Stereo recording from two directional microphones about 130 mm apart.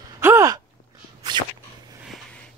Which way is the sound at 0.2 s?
20° right (ahead or behind).